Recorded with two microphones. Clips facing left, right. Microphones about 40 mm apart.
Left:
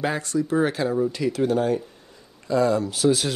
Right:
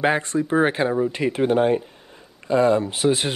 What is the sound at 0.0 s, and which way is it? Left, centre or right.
Speech, right.